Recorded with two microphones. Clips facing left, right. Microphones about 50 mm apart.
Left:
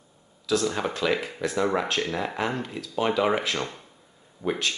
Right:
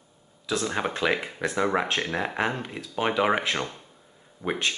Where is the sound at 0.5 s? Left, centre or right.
Right.